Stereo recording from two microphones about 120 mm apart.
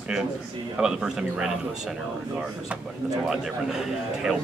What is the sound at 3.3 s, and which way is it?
Speech, 5° right (ahead or behind).